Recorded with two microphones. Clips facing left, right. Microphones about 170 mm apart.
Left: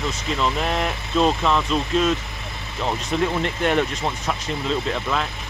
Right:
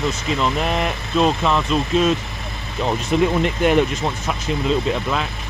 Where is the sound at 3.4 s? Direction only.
10° right (ahead or behind).